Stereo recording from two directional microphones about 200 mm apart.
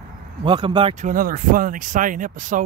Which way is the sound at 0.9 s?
40° right (ahead or behind).